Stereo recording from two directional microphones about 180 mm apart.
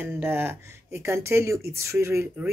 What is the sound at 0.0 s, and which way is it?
Speech, 10° right (ahead or behind).